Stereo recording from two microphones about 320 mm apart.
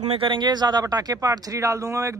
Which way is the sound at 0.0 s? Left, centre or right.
Centre.